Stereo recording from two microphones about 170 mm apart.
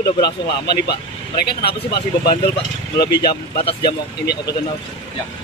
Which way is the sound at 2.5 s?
25° left (ahead or behind).